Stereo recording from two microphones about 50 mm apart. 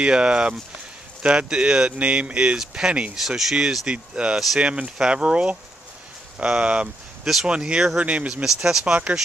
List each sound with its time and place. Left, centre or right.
0.0 s speech: centre
3.2 s speech: centre
3.8 s speech: right
8.0 s speech: right
8.5 s speech: centre